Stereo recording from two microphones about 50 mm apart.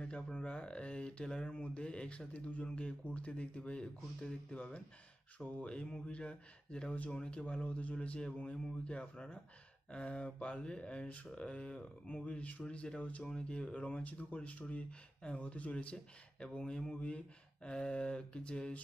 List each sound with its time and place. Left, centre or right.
0.0 s speech: left